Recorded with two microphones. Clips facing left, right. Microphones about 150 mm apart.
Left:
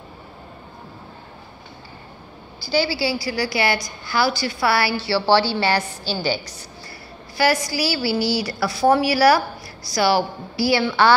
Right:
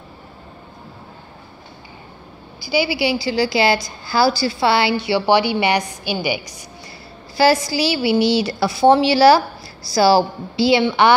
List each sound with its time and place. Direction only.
2.6 s a woman's voice: 10° right (ahead or behind)
7.3 s a woman's voice: 25° right (ahead or behind)